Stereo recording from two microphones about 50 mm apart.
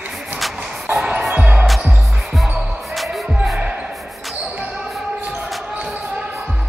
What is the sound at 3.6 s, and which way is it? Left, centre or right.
Basketball bounce, right.